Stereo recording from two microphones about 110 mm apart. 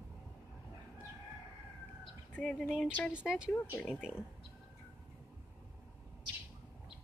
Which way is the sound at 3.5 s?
20° left (ahead or behind).